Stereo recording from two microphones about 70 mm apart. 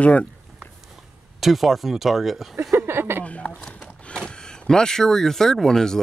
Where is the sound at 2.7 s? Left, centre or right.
Right.